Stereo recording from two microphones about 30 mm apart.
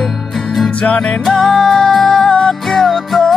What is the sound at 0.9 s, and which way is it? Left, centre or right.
Music, left.